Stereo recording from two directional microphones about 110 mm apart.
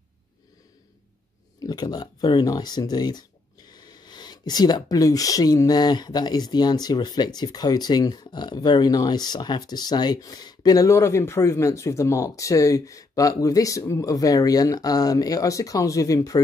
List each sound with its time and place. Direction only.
1.6 s speech: 40° left (ahead or behind)